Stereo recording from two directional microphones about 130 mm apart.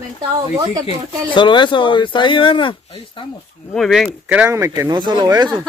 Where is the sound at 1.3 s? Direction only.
35° left (ahead or behind).